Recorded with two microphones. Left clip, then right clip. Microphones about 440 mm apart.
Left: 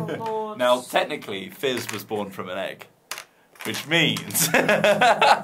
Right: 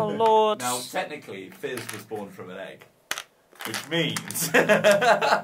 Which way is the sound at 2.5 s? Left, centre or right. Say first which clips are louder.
Left 8 dB; left.